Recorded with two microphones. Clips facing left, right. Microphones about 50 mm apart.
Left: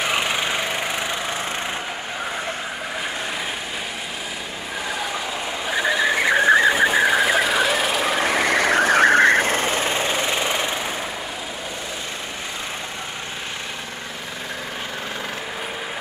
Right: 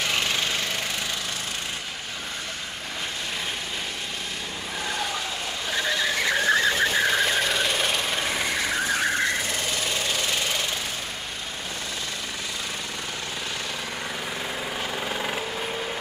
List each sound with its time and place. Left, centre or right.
0.0 s a sound: centre
4.8 s vehicle: centre
8.0 s vehicle: left